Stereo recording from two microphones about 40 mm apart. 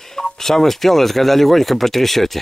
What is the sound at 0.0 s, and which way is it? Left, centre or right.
Speech, centre.